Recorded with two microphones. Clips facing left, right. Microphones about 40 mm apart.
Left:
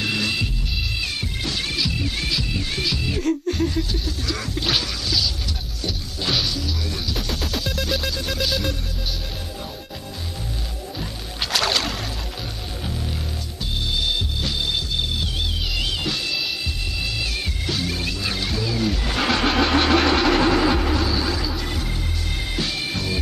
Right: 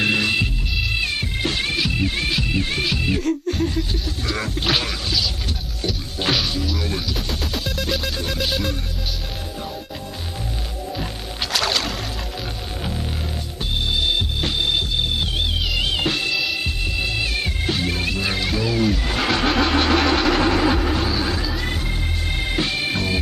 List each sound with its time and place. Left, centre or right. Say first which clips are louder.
0.0 s music: right 4 dB; right
3.2 s a sound: even; centre
4.3 s a sound: right 3 dB; right
6.5 s music: right 3 dB; right
7.2 s music: even; centre
11.5 s music: even; centre
14.4 s music: right 3 dB; right
18.5 s music: right 3 dB; right
18.8 s vehicle: even; centre
22.6 s music: right 3 dB; right